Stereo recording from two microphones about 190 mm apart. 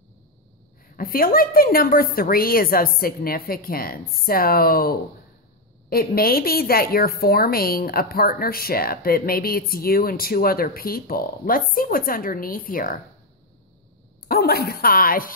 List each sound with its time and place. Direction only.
0.8 s a woman's voice: 50° left (ahead or behind)
14.2 s a woman's voice: 55° left (ahead or behind)